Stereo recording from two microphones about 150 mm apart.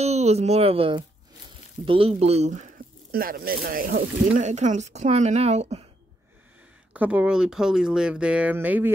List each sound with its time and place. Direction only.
0.0 s speech: 45° right (ahead or behind)
3.1 s speech: 80° right
4.3 s speech: 50° right (ahead or behind)
6.9 s speech: 10° right (ahead or behind)